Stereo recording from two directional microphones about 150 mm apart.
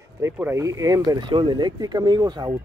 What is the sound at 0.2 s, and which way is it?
Speech, 15° right (ahead or behind).